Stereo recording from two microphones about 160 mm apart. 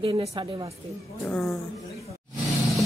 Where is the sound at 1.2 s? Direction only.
5° left (ahead or behind).